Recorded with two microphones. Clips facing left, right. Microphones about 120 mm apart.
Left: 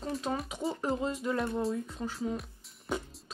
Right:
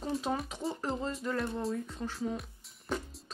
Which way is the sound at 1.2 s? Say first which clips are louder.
Left 1 dB; centre (ahead or behind).